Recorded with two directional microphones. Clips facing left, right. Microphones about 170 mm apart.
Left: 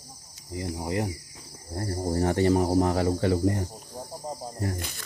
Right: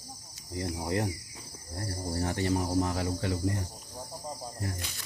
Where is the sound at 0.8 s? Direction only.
10° left (ahead or behind).